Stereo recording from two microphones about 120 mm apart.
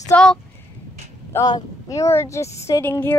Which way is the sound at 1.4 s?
30° left (ahead or behind).